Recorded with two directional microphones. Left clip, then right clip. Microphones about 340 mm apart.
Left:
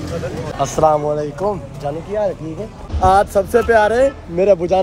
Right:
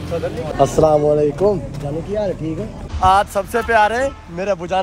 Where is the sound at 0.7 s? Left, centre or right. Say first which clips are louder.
Even; left.